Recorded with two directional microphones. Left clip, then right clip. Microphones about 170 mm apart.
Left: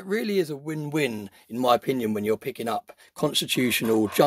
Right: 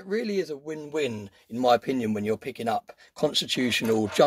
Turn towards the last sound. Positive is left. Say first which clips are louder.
# left 1 dB
turn(degrees=20)  # may be behind; listen again after turning